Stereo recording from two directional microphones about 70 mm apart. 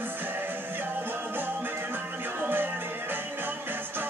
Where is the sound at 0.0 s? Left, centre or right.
Right.